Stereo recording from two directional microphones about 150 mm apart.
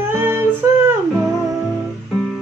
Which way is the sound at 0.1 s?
15° right (ahead or behind).